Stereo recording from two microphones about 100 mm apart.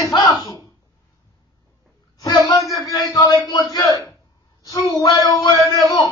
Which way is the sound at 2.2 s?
40° left (ahead or behind).